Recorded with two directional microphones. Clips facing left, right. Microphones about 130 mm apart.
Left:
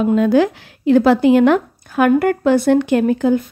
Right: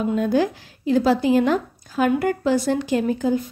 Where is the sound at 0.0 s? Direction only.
90° left.